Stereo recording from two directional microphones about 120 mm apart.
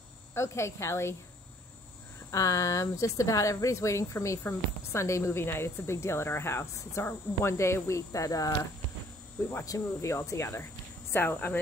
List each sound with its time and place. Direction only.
0.3 s speech: 25° left (ahead or behind)
2.3 s speech: 25° left (ahead or behind)